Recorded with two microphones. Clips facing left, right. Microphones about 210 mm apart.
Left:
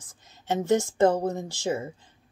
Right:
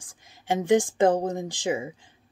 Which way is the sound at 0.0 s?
15° right (ahead or behind).